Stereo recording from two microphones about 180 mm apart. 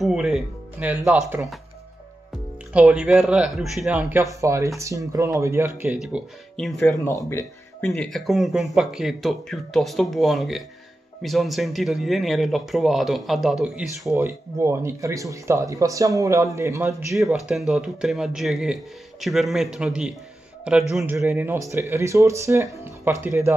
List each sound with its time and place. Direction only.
0.0 s speech: 5° right (ahead or behind)
2.7 s speech: 5° right (ahead or behind)
7.1 s speech: 15° left (ahead or behind); by 14.1 s centre (ahead or behind)
14.1 s speech: 15° right (ahead or behind)
17.1 s speech: 5° right (ahead or behind)